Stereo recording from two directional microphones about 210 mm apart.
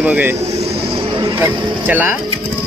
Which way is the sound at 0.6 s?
25° right (ahead or behind).